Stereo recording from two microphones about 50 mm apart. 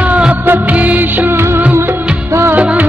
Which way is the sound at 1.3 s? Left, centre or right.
Right.